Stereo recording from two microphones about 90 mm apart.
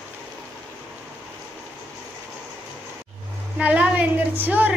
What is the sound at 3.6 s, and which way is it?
A woman's voice, 15° right (ahead or behind).